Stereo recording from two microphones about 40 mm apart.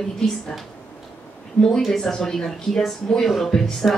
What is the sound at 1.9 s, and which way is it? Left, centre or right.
A woman's voice, centre.